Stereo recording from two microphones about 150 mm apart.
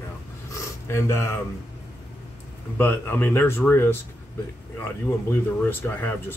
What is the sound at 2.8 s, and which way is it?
Speech, 15° left (ahead or behind).